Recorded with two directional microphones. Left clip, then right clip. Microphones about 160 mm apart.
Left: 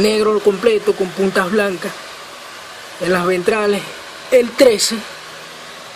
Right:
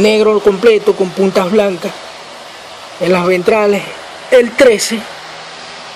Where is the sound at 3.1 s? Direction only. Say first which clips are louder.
Right 5 dB; 10° right (ahead or behind).